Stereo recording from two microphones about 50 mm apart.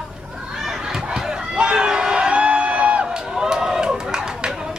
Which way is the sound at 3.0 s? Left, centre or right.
Centre.